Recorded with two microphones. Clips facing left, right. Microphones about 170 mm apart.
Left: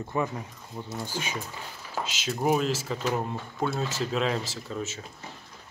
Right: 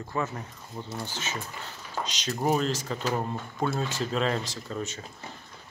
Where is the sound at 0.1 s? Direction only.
15° left (ahead or behind).